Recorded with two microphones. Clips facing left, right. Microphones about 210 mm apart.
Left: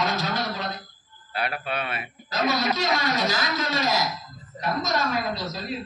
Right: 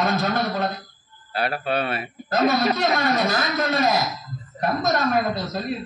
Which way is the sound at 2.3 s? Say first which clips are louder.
Right 5 dB; 55° right (ahead or behind).